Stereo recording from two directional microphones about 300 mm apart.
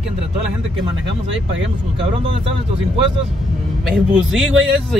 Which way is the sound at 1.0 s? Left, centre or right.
Right.